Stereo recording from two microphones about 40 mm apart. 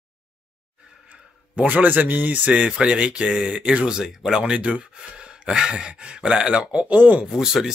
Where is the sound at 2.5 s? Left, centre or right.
Right.